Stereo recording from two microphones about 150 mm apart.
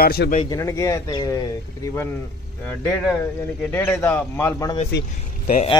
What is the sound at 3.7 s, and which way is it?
Speech, 10° left (ahead or behind).